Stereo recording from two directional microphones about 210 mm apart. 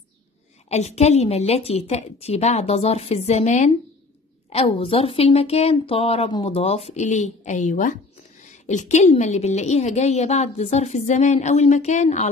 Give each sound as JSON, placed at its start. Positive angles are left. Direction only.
{"t": 0.7, "sound": "a woman's voice", "side_deg": 30}